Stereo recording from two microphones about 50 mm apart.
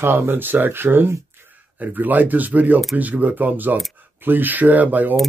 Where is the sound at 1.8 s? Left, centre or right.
Right.